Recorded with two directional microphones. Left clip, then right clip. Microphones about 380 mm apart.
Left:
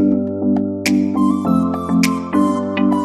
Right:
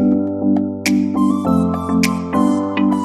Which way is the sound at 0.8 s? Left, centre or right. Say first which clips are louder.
Left 1 dB; centre.